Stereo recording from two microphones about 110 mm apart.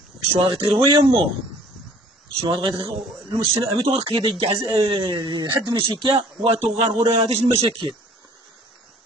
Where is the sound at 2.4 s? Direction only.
55° right (ahead or behind).